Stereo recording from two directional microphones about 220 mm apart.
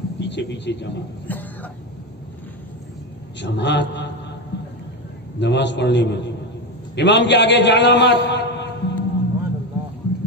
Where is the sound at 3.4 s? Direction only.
50° left (ahead or behind).